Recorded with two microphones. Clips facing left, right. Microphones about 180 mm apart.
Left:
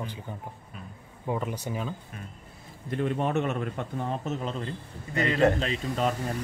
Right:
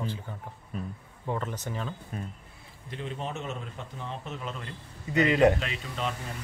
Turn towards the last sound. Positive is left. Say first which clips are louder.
# left 6 dB
turn(degrees=40)  # may be behind; listen again after turning